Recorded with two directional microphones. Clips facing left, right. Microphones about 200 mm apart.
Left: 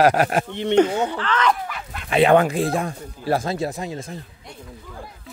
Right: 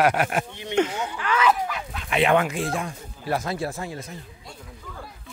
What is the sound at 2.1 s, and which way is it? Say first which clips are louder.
Speech: left 5 dB; 35° left (ahead or behind).